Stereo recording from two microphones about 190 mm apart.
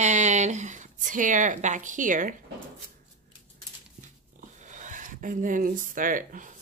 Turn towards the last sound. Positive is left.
turn(degrees=-45)  # may be behind; listen again after turning